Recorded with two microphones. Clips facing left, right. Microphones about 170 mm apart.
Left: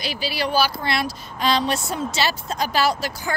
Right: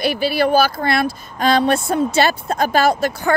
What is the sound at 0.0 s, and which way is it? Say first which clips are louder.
Speech: right 9 dB; 55° right (ahead or behind).